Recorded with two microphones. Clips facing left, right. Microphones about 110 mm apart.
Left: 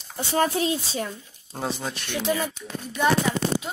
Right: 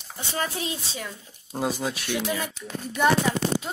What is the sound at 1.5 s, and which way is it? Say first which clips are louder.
Speech: right 2 dB; 5° right (ahead or behind).